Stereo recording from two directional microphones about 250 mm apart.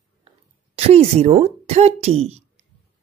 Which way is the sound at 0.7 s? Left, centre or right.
Right.